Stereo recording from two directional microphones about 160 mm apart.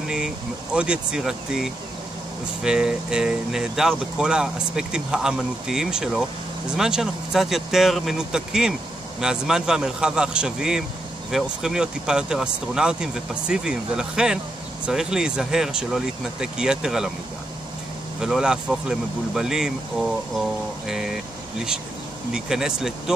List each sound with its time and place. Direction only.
0.7 s speech: 5° right (ahead or behind)
18.2 s speech: 5° right (ahead or behind)